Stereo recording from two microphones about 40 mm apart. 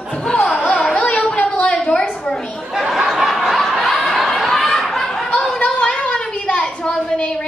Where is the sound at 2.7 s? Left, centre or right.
Centre.